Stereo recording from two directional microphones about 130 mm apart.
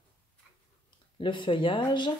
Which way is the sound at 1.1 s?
40° left (ahead or behind).